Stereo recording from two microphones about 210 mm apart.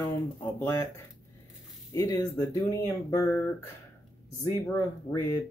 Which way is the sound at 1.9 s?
15° left (ahead or behind).